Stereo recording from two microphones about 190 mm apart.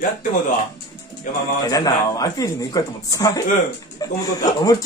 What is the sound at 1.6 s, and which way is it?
Speech, 20° left (ahead or behind).